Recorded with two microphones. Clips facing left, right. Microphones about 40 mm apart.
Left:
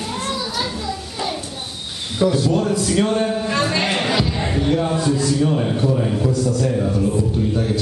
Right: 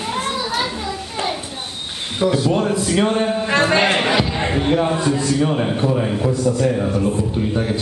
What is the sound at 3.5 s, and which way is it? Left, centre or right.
A man's voice, right.